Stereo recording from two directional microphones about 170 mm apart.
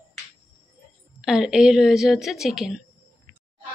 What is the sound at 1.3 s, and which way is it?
A woman's voice, 5° right (ahead or behind).